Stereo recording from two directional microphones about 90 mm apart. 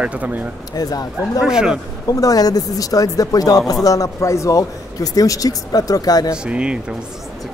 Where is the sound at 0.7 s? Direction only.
45° left (ahead or behind).